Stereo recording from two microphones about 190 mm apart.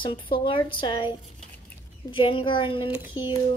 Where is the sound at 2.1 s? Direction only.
25° left (ahead or behind).